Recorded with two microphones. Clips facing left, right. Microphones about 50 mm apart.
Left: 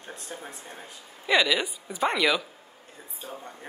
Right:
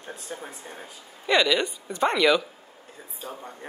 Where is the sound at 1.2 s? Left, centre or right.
Centre.